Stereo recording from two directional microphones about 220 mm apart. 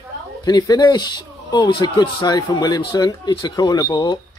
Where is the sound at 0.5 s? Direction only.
15° left (ahead or behind).